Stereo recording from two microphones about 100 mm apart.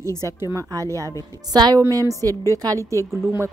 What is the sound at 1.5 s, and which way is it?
A woman's voice, 40° right (ahead or behind).